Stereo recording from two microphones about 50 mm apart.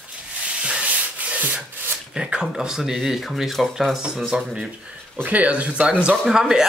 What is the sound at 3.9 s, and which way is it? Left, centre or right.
Speech, centre.